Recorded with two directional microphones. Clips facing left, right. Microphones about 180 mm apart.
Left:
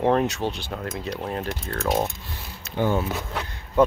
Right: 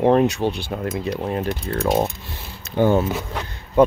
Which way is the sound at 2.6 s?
45° right (ahead or behind).